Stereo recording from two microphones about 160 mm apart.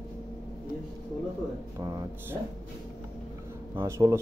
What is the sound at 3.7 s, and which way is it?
Speech, 15° right (ahead or behind).